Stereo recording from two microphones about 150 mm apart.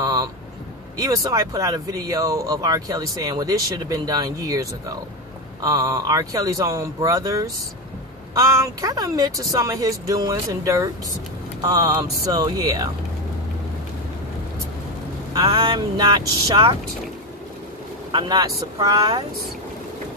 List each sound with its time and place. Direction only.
0.0 s vehicle: 25° right (ahead or behind)
0.9 s speech: 25° right (ahead or behind)
15.4 s speech: 30° right (ahead or behind)
18.1 s speech: 30° right (ahead or behind)